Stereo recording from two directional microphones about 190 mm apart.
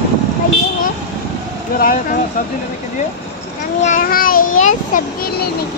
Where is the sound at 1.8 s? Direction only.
45° left (ahead or behind).